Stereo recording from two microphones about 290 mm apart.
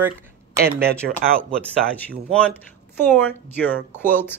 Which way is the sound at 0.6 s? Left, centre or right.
Right.